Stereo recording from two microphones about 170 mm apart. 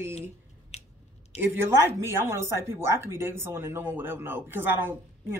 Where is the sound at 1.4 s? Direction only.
15° right (ahead or behind).